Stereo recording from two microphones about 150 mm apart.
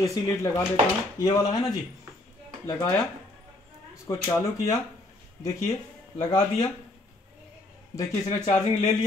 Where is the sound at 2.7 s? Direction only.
25° left (ahead or behind).